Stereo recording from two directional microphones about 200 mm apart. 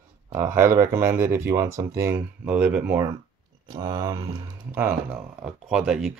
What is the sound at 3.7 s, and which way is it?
Speech, 20° right (ahead or behind).